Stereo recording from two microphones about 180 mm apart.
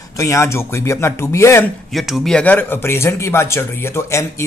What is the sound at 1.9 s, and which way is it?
Speech, centre (ahead or behind).